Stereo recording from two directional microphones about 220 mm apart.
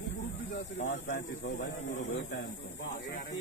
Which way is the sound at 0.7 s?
50° left (ahead or behind).